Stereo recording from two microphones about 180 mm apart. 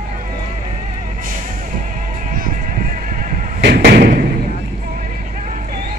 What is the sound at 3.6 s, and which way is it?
Thump, 60° right (ahead or behind).